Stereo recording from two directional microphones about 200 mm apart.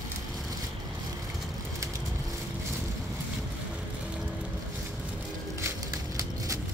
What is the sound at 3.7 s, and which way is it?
Music, 5° right (ahead or behind).